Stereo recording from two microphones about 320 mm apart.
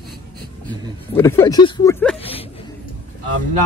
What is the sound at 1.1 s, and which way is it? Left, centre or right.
Speech, centre.